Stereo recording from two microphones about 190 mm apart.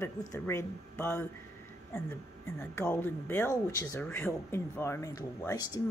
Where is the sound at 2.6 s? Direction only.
10° left (ahead or behind).